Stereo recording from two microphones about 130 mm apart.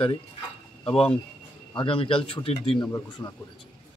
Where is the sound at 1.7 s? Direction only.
40° left (ahead or behind).